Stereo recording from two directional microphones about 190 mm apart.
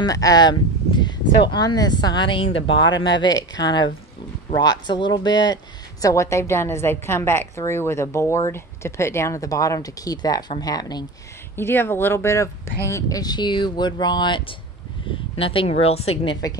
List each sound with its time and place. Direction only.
0.0 s speech: 20° left (ahead or behind)